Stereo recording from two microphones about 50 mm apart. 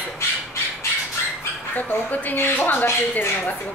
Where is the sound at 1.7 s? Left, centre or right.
Left.